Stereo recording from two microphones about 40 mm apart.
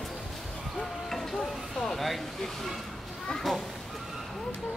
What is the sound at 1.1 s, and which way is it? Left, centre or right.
Vehicle, centre.